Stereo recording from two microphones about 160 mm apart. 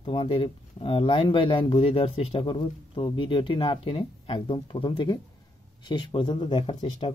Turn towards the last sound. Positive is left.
turn(degrees=30)  # may be behind; listen again after turning